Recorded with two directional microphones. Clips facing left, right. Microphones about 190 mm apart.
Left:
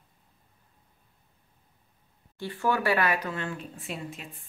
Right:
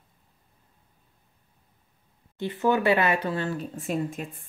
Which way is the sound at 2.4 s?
20° right (ahead or behind).